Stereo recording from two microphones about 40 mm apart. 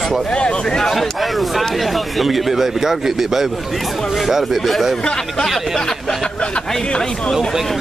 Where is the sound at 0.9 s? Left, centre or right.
Centre.